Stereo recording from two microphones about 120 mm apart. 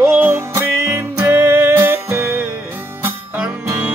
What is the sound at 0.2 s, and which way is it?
Music, 20° right (ahead or behind).